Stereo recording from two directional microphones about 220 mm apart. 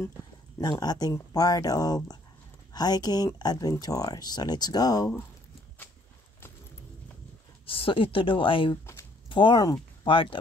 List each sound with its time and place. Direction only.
0.6 s speech: 20° left (ahead or behind)
7.6 s a woman's voice: 25° left (ahead or behind)
8.8 s a sound: 15° left (ahead or behind)